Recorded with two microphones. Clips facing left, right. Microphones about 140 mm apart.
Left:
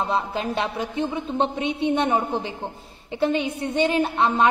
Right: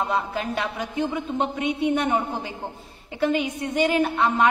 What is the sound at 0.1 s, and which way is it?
A woman's voice, 25° left (ahead or behind).